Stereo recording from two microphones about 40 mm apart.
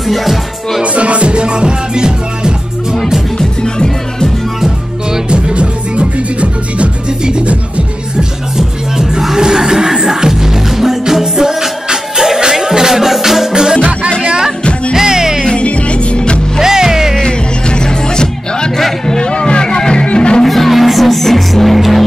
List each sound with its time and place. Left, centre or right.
0.0 s music: centre
0.8 s music: right
3.3 s music: centre
4.6 s music: centre
5.3 s music: right
8.2 s music: centre
15.4 s music: left
16.6 s music: centre
17.3 s music: left
20.4 s music: centre